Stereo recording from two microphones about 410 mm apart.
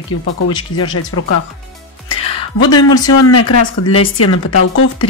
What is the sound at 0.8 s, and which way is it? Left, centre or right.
Speech, left.